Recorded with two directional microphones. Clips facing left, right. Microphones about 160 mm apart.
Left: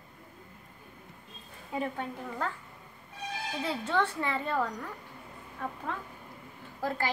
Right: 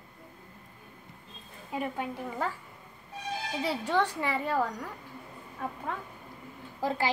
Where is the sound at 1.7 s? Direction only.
5° right (ahead or behind).